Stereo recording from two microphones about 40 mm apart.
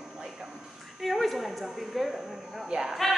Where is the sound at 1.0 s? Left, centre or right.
Centre.